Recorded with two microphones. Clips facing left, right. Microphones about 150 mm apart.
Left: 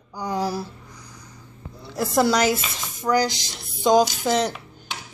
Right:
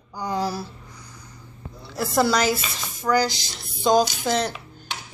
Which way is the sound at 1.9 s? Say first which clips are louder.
Left 1 dB; 15° left (ahead or behind).